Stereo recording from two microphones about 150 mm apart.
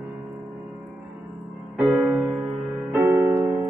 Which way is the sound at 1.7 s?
5° right (ahead or behind).